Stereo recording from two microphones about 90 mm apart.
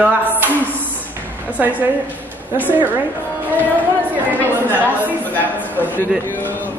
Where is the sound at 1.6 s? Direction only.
20° right (ahead or behind).